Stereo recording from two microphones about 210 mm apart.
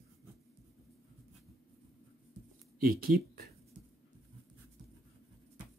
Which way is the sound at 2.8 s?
45° right (ahead or behind).